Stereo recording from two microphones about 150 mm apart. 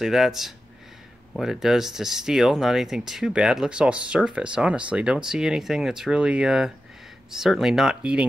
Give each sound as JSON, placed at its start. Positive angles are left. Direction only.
{"t": 0.0, "sound": "speech", "side_deg": 0}